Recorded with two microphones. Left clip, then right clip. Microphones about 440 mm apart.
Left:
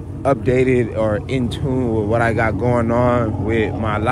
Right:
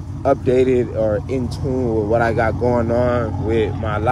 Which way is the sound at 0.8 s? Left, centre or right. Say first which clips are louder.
Even; left.